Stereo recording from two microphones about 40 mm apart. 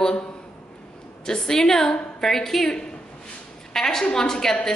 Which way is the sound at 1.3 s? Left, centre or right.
Centre.